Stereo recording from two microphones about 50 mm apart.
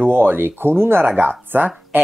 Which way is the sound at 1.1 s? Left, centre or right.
Right.